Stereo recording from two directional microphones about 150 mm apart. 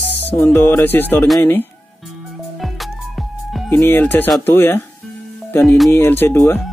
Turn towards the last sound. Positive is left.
turn(degrees=15)  # may be behind; listen again after turning